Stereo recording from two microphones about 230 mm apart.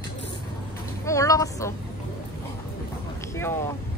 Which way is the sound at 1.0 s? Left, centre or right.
Centre.